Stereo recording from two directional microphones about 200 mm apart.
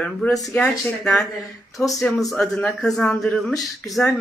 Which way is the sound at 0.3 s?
15° left (ahead or behind).